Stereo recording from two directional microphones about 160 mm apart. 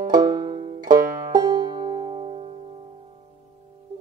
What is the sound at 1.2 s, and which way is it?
Music, 25° right (ahead or behind).